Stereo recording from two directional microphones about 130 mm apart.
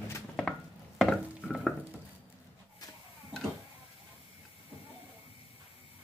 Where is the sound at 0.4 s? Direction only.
5° left (ahead or behind).